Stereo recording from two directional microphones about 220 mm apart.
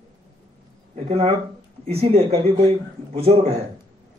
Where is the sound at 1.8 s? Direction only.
30° right (ahead or behind).